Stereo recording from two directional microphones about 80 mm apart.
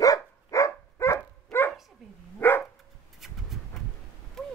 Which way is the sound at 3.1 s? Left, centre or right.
Centre.